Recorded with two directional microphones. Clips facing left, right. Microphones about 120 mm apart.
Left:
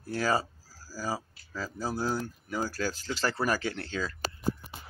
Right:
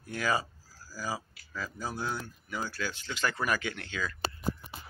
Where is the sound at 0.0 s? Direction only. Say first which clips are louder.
Left 3 dB; 35° left (ahead or behind).